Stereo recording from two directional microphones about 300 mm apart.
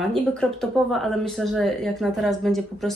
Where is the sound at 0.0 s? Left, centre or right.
Centre.